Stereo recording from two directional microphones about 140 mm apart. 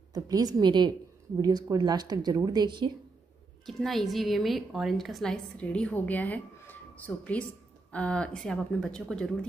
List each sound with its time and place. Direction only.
0.1 s a woman's voice: 30° right (ahead or behind)
3.6 s a woman's voice: centre (ahead or behind)
7.9 s speech: 10° left (ahead or behind)